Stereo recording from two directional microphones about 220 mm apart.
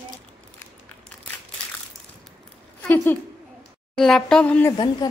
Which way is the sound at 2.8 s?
10° left (ahead or behind).